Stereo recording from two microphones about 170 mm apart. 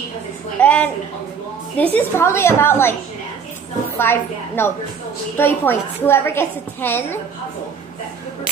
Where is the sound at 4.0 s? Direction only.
15° left (ahead or behind).